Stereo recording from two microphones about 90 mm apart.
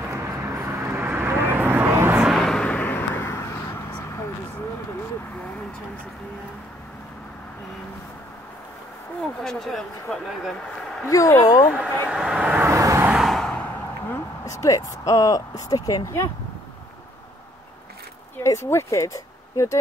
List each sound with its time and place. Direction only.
0.1 s vehicle: 35° right (ahead or behind)
2.1 s vehicle: 5° right (ahead or behind)
2.4 s vehicle: 10° left (ahead or behind); by 4.3 s 30° left (ahead or behind)
9.2 s a sound: 5° left (ahead or behind)
11.1 s speech: 35° left (ahead or behind)
12.1 s vehicle: 10° right (ahead or behind)
12.6 s vehicle: 30° right (ahead or behind)
13.1 s vehicle: centre (ahead or behind)
13.5 s a sound: 20° left (ahead or behind)
14.4 s speech: 35° left (ahead or behind)
18.4 s speech: 30° left (ahead or behind)